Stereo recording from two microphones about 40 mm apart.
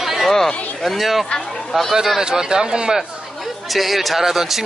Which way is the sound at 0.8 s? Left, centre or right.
Centre.